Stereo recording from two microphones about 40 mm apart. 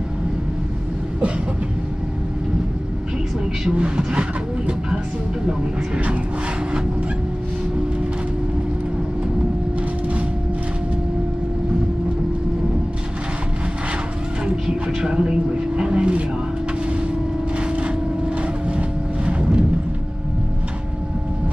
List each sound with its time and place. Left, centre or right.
3.7 s vehicle: right
14.4 s vehicle: centre
18.7 s vehicle: right